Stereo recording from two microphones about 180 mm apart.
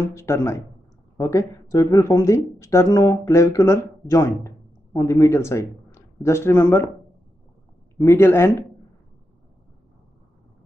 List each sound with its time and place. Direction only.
0.0 s a woman's voice: 15° left (ahead or behind)
8.0 s a woman's voice: 15° left (ahead or behind)